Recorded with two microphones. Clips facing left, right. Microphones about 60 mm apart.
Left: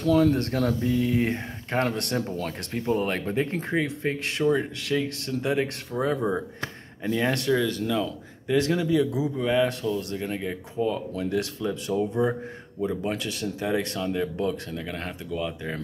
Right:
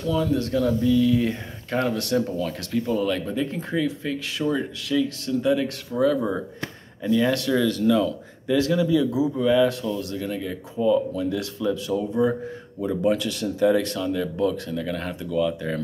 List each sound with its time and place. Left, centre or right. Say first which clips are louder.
0.0 s speech: left 2 dB; left
7.5 s speech: right 5 dB; left
8.5 s speech: right 2 dB; left
12.8 s speech: right 5 dB; centre